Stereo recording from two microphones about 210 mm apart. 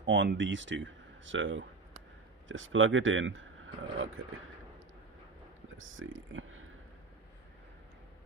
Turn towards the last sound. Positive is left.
turn(degrees=-70)  # may be behind; listen again after turning